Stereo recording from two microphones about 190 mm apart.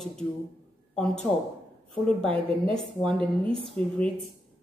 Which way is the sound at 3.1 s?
30° right (ahead or behind).